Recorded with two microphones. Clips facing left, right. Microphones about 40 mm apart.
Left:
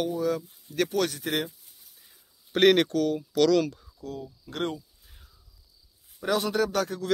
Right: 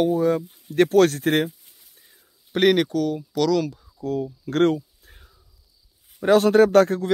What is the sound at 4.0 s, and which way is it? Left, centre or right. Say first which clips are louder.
Speech: right 15 dB; right.